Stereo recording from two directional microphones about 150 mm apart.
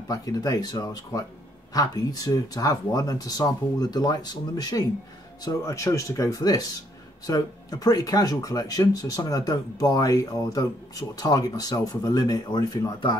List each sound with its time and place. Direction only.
0.1 s speech: 25° left (ahead or behind)